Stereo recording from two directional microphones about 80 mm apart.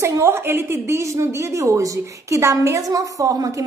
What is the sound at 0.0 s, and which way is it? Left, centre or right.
A woman's voice, right.